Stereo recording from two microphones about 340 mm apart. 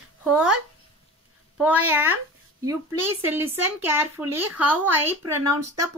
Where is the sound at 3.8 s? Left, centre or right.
Centre.